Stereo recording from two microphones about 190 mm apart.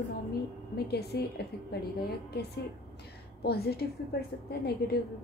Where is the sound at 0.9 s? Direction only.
55° left (ahead or behind).